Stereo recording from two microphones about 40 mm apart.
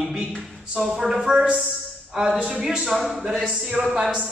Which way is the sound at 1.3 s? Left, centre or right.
Right.